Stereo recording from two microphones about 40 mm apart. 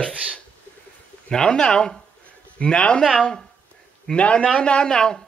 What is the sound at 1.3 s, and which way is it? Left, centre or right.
Speech, centre.